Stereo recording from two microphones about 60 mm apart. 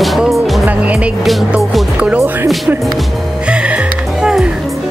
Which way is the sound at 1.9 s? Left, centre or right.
Centre.